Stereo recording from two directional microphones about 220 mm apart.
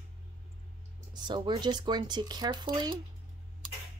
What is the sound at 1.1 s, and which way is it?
Speech, 20° right (ahead or behind).